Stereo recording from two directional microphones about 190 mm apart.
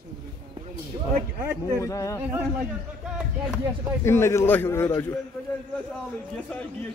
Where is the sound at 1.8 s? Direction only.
15° left (ahead or behind).